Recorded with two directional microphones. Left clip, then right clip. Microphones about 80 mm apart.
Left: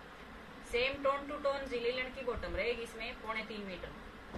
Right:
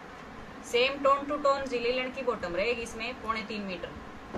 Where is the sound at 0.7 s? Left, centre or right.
Centre.